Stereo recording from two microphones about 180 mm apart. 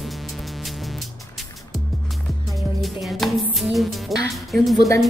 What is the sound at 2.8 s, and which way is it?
Speech, centre (ahead or behind).